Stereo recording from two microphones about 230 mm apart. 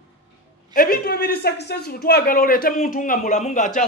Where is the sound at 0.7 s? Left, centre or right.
Left.